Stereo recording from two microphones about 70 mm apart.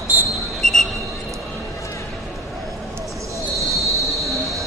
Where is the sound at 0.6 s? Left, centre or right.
Centre.